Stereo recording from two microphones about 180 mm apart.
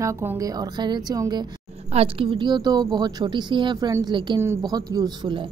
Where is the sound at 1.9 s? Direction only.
30° right (ahead or behind).